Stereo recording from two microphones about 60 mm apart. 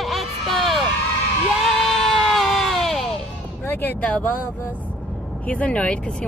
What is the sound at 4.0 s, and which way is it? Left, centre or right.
Speech, left.